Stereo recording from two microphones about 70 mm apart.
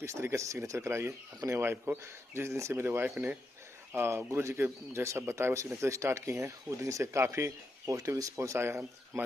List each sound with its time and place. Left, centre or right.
0.0 s speech: right